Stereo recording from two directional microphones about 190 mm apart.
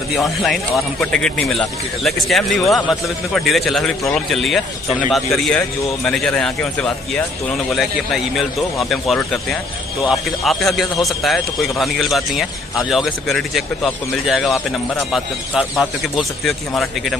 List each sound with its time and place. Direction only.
0.1 s a man's voice: centre (ahead or behind)